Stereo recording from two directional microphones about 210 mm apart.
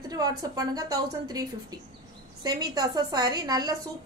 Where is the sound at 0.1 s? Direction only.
15° right (ahead or behind).